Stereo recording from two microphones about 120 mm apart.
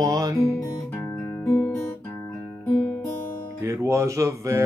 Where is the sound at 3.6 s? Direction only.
25° right (ahead or behind).